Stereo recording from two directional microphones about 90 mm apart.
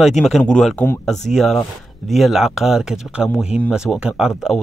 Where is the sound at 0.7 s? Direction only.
25° left (ahead or behind).